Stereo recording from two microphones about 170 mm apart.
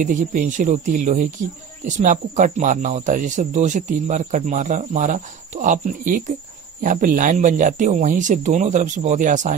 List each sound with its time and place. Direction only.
0.0 s speech: 50° right (ahead or behind)